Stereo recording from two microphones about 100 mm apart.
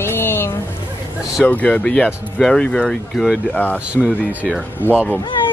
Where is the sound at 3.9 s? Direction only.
10° right (ahead or behind).